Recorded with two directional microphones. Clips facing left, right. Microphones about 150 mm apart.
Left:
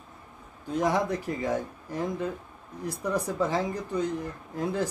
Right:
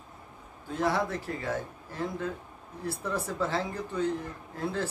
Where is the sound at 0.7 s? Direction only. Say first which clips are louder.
Left 3 dB; 15° left (ahead or behind).